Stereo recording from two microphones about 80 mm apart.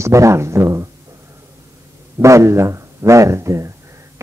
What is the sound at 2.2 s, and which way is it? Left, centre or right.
A man's voice, right.